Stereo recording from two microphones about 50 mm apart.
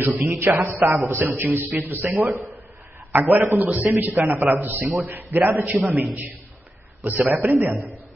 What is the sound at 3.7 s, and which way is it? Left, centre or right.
Speech, right.